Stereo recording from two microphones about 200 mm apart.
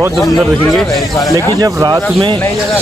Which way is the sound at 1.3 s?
15° right (ahead or behind).